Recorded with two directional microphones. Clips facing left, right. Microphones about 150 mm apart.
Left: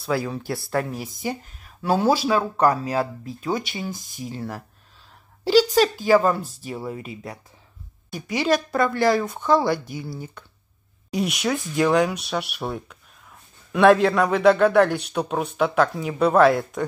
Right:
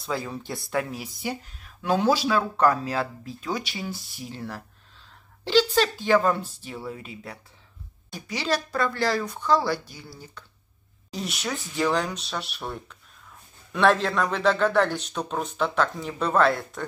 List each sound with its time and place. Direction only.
0.0 s speech: 5° left (ahead or behind)
0.7 s speech: 45° left (ahead or behind)
1.8 s speech: 5° left (ahead or behind)
3.5 s speech: 50° left (ahead or behind)
4.3 s speech: 10° left (ahead or behind)
8.5 s speech: 15° left (ahead or behind)
9.2 s speech: 50° left (ahead or behind)
9.5 s speech: 15° left (ahead or behind)
10.1 s speech: 55° left (ahead or behind)
11.1 s speech: 10° left (ahead or behind)